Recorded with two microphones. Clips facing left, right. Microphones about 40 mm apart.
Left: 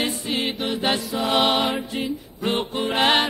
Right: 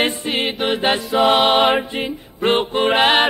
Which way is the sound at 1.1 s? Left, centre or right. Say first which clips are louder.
Right 8 dB; right.